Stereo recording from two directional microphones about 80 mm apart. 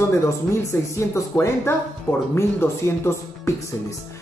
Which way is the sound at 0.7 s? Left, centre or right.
Left.